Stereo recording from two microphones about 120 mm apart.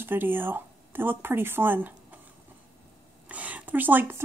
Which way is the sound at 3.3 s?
15° right (ahead or behind).